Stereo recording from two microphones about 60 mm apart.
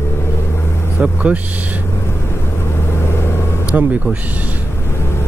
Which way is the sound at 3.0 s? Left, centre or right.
Left.